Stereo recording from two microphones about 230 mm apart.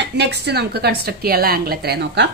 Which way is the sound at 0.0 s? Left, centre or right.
Right.